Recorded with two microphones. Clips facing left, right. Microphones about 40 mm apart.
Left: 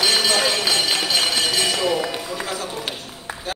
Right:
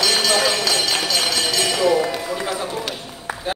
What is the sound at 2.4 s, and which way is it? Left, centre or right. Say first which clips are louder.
Run: right 3 dB; centre.